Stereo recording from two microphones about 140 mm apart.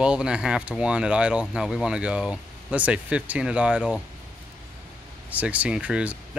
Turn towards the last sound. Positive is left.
turn(degrees=-10)  # may be behind; listen again after turning